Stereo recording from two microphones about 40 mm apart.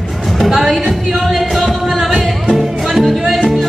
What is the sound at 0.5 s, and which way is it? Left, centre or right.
Music, centre.